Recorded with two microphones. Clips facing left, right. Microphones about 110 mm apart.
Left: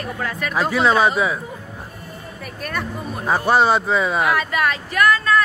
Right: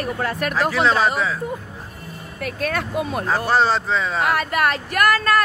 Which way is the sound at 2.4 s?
90° right.